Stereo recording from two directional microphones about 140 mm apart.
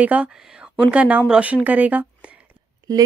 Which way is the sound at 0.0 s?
10° right (ahead or behind).